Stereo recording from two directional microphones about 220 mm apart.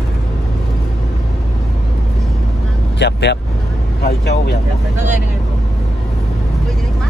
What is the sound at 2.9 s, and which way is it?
Speech, 50° left (ahead or behind).